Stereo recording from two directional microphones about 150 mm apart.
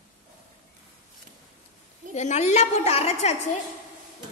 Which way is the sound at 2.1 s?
50° left (ahead or behind).